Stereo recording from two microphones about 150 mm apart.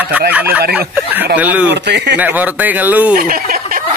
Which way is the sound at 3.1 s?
70° right (ahead or behind).